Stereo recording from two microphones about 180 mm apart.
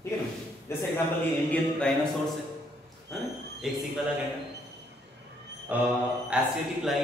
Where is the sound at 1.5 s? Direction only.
5° left (ahead or behind).